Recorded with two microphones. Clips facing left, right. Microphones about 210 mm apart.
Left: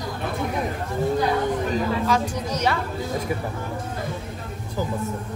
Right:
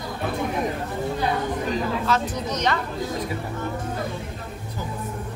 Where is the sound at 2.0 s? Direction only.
10° left (ahead or behind).